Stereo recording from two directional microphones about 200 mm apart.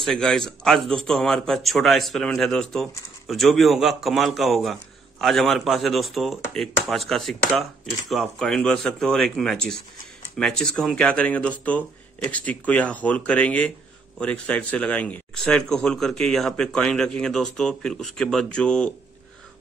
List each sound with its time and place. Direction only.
0.0 s speech: 5° left (ahead or behind)